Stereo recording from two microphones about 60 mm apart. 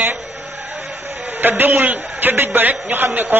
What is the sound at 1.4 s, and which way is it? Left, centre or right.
A man's voice, right.